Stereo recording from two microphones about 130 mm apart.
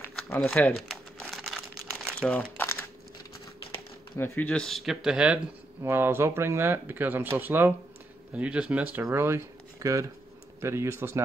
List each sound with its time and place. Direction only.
0.3 s speech: 10° left (ahead or behind)
1.2 s crumpling: centre (ahead or behind)
2.1 s speech: 10° left (ahead or behind)
4.2 s speech: 10° left (ahead or behind); by 5.4 s 5° right (ahead or behind)
5.9 s speech: 15° right (ahead or behind)